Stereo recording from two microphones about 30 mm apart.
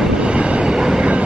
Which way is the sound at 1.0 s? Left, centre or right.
Right.